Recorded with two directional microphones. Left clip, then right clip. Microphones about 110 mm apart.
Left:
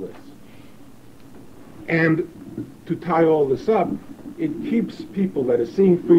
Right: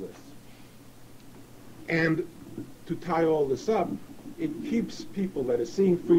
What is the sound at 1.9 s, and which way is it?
Speech, 35° left (ahead or behind).